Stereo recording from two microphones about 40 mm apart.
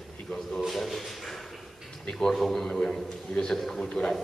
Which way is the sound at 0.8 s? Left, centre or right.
Centre.